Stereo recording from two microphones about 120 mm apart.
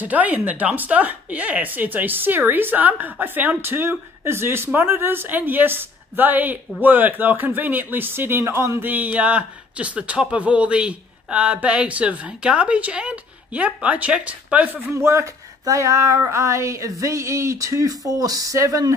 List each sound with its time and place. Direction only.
0.0 s speech: 15° right (ahead or behind)